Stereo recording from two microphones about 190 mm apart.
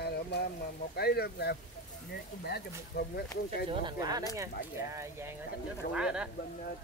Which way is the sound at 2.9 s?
60° left (ahead or behind).